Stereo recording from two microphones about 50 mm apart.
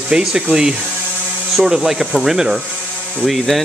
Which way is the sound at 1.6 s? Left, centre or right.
Centre.